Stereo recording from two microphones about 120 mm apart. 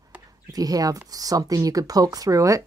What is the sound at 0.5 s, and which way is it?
Speech, 30° right (ahead or behind).